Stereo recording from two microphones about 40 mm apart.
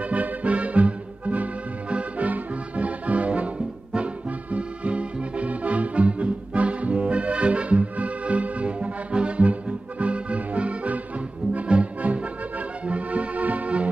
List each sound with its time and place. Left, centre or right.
0.0 s music: right
3.5 s music: right
12.0 s music: right